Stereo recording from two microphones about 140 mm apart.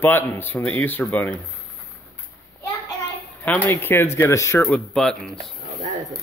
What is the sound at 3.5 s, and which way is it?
Speech, 15° left (ahead or behind).